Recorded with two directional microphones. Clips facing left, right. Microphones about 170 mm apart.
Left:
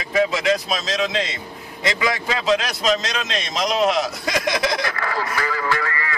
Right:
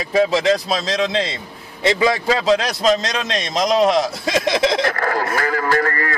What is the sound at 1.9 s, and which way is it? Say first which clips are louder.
A man's voice: right 6 dB; 35° right (ahead or behind).